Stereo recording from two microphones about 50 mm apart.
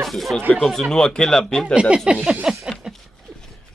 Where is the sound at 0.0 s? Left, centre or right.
Centre.